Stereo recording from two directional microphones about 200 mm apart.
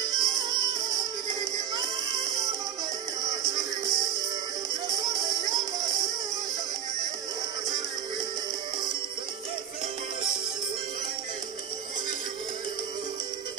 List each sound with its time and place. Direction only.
0.0 s music: 20° right (ahead or behind)